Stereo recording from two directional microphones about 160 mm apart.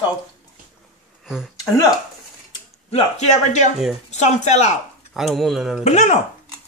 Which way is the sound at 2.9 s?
40° left (ahead or behind).